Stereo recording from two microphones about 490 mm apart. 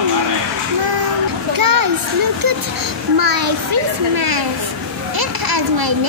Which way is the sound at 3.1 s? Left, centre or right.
Right.